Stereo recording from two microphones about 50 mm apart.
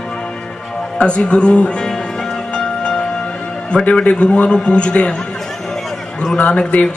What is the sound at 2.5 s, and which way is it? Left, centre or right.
Music, centre.